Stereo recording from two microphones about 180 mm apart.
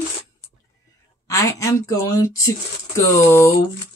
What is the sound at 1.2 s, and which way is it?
Mantra, 15° left (ahead or behind).